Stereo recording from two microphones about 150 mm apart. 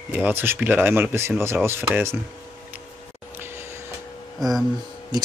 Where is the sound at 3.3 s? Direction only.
15° right (ahead or behind).